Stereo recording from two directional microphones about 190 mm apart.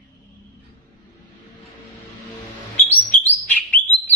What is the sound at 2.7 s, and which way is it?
Bird, 10° left (ahead or behind).